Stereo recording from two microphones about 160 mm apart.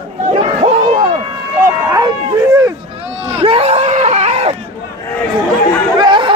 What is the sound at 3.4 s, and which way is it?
Screaming, 40° right (ahead or behind).